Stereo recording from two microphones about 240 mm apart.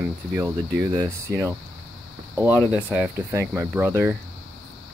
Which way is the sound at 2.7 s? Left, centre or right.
Centre.